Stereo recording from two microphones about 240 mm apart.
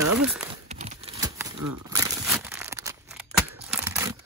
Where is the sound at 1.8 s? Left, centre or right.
Centre.